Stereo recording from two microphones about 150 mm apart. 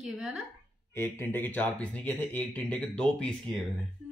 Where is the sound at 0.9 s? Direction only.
15° left (ahead or behind).